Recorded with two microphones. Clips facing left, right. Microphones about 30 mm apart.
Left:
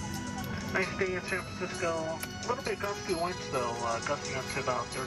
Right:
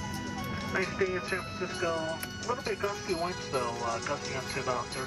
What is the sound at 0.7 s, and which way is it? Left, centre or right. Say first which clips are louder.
Speech: right 1 dB; centre.